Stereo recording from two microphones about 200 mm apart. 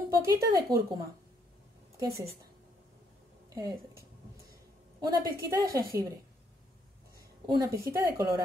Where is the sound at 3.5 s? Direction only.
20° right (ahead or behind).